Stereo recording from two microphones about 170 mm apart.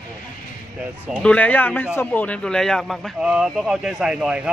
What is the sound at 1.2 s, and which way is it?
Speech, 5° left (ahead or behind).